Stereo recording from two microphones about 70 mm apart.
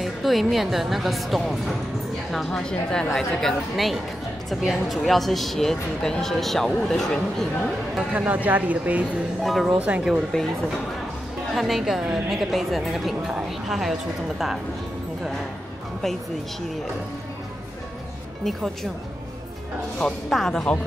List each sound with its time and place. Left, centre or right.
0.0 s a woman's voice: centre
8.0 s speech: centre
9.4 s speech: centre
9.8 s speech: right
10.3 s a woman's voice: centre
11.5 s speech: centre
18.4 s speech: centre
20.2 s speech: centre